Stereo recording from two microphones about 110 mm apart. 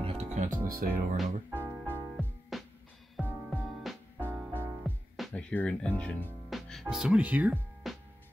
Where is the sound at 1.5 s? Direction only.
20° right (ahead or behind).